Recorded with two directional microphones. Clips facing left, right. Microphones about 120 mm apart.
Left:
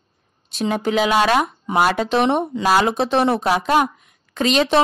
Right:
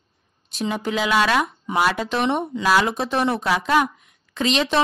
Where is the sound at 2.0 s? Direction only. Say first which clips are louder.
Left 4 dB; 80° left.